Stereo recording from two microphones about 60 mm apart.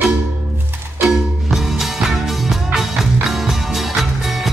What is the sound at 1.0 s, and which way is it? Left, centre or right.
Music, centre.